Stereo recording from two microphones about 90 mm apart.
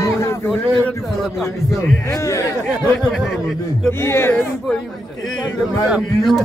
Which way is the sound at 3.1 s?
5° left (ahead or behind).